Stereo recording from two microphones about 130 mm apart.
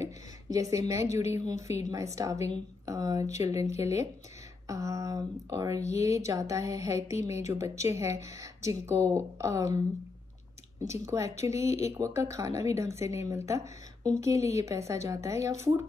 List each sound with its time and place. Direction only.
0.0 s speech: 25° right (ahead or behind)
10.8 s speech: 25° right (ahead or behind)